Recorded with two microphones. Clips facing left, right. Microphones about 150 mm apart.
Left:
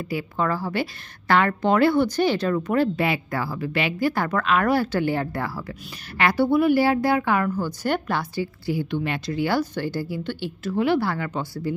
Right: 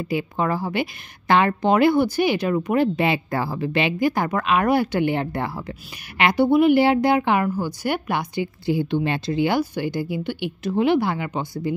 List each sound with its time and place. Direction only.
0.0 s a woman's voice: 20° right (ahead or behind)